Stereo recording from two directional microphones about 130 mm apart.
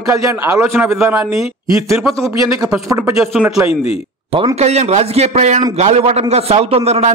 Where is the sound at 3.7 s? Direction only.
50° left (ahead or behind).